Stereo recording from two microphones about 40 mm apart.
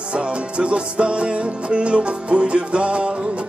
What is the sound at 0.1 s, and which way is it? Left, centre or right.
Music, right.